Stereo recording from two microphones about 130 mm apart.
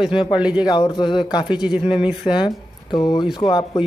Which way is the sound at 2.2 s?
35° left (ahead or behind).